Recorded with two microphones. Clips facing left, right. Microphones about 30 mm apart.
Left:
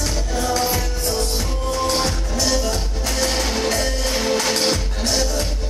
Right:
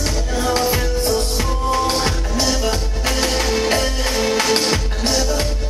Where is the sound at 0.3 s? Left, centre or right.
Right.